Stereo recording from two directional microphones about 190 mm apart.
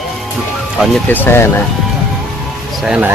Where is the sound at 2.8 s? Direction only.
5° right (ahead or behind).